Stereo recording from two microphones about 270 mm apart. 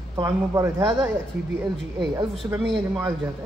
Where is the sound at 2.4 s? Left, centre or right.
Centre.